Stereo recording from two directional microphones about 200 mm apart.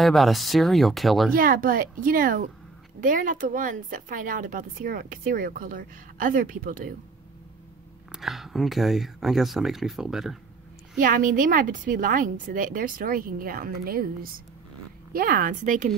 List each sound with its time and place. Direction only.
0.0 s speech: centre (ahead or behind)
1.3 s a woman's voice: 45° right (ahead or behind)
8.1 s speech: centre (ahead or behind)
11.0 s a woman's voice: 45° right (ahead or behind)